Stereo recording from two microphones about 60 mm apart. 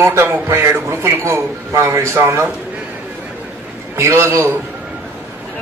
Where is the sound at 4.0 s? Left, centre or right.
Right.